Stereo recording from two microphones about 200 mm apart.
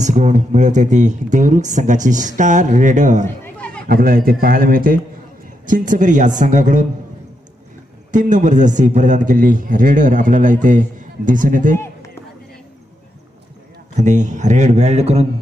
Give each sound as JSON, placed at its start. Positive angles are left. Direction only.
{"t": 0.0, "sound": "a man's voice", "side_deg": -35}
{"t": 3.4, "sound": "chatter", "side_deg": 5}
{"t": 3.8, "sound": "a man's voice", "side_deg": -45}
{"t": 8.1, "sound": "a man's voice", "side_deg": -40}
{"t": 13.9, "sound": "a man's voice", "side_deg": -40}